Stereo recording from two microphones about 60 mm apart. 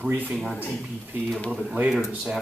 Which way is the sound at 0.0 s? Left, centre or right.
Right.